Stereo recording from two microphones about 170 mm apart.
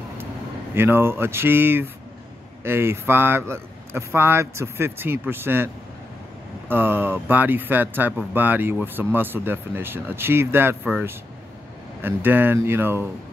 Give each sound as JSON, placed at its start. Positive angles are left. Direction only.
{"t": 0.7, "sound": "speech", "side_deg": -15}
{"t": 6.7, "sound": "speech", "side_deg": -10}